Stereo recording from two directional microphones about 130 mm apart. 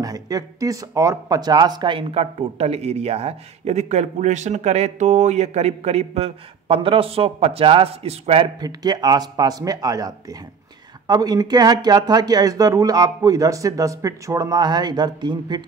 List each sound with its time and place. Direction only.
0.0 s speech: 30° right (ahead or behind); by 8.5 s 50° right (ahead or behind)
8.5 s speech: 30° right (ahead or behind)